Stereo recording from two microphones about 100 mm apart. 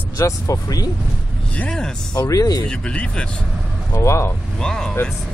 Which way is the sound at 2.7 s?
10° left (ahead or behind).